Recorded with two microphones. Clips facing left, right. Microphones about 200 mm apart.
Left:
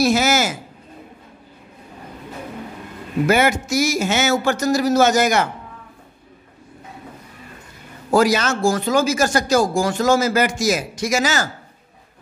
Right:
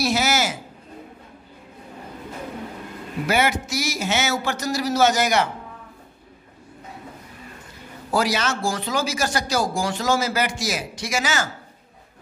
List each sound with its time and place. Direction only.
0.0 s a woman's voice: 50° left (ahead or behind)
3.3 s speech: 50° left (ahead or behind)
8.1 s speech: 45° left (ahead or behind)